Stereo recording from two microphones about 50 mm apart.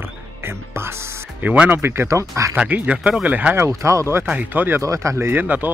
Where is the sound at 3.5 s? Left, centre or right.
Right.